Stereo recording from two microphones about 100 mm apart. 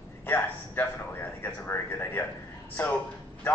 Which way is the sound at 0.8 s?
20° left (ahead or behind).